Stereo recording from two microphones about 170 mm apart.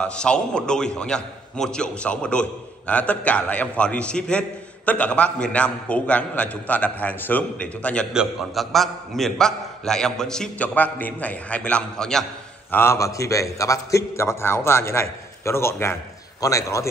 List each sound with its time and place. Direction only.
0.0 s a man's voice: 5° left (ahead or behind)
12.7 s a man's voice: 15° left (ahead or behind)